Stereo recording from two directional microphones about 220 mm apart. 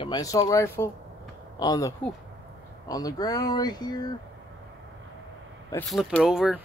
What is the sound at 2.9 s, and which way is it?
Speech, 15° left (ahead or behind).